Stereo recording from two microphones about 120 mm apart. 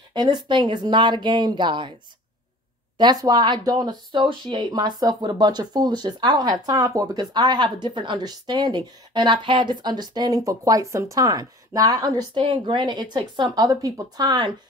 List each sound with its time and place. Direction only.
0.1 s speech: 35° right (ahead or behind)
3.0 s speech: 35° right (ahead or behind)